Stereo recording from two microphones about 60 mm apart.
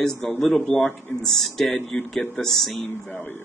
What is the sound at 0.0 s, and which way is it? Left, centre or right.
Speech, centre.